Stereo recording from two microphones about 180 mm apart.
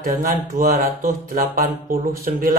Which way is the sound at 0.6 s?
55° right (ahead or behind).